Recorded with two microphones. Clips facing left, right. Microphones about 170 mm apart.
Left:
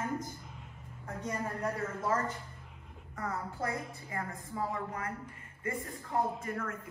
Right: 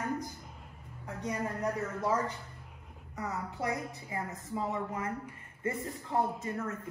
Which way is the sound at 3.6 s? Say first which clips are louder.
Right 3 dB; 20° right (ahead or behind).